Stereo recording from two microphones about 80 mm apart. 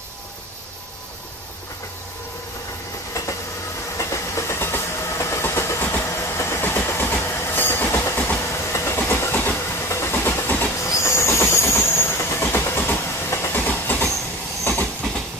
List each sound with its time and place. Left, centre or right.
3.2 s train: left
4.0 s vehicle: left
8.7 s train: left
10.9 s train: left